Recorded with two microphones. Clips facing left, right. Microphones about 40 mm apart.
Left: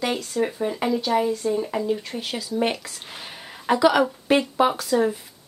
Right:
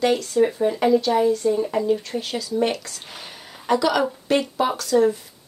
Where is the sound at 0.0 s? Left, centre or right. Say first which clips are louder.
Right 5 dB; centre.